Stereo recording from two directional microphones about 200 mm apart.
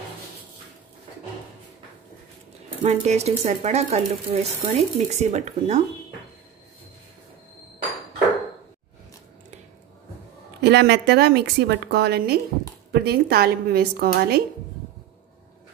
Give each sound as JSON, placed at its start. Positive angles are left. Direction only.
{"t": 2.8, "sound": "speech", "side_deg": -30}
{"t": 10.6, "sound": "a woman's voice", "side_deg": -55}